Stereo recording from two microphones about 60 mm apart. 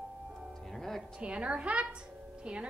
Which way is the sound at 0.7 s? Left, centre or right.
Centre.